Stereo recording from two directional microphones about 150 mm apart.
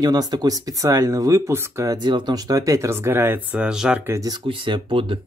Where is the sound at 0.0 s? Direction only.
25° right (ahead or behind); by 4.0 s 5° right (ahead or behind).